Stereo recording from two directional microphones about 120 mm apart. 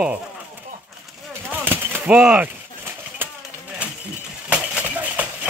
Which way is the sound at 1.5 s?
15° right (ahead or behind).